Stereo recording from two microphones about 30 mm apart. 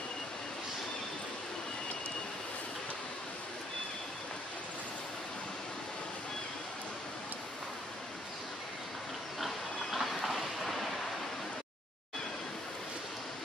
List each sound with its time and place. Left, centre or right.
9.4 s train: centre